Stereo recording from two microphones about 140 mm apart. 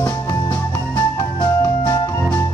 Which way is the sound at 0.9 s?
25° left (ahead or behind).